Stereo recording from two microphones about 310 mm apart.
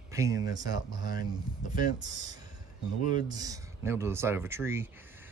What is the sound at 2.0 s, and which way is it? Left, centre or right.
Speech, right.